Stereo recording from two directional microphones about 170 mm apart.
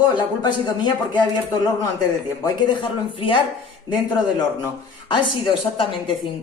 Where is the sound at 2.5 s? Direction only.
30° left (ahead or behind).